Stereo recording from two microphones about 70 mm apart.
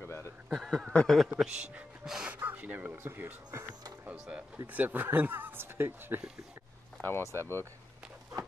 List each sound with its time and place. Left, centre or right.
0.5 s a man's voice: centre
1.4 s speech: centre
2.2 s gasp: right
3.0 s speech: right
4.0 s speech: right
7.0 s speech: left